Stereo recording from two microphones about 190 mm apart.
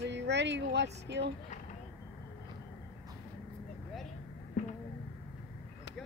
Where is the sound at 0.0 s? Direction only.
65° right (ahead or behind).